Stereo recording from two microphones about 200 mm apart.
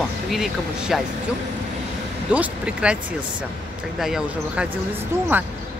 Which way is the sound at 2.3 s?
5° right (ahead or behind).